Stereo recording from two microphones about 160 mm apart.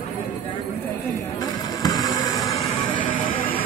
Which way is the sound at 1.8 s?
25° left (ahead or behind).